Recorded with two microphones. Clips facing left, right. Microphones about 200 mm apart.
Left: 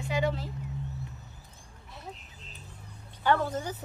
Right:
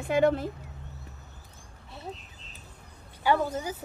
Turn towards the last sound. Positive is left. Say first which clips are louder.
# right 2 dB
turn(degrees=-10)  # may be behind; listen again after turning